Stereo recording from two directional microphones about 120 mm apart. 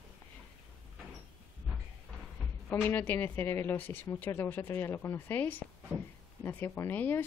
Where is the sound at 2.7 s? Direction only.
15° left (ahead or behind).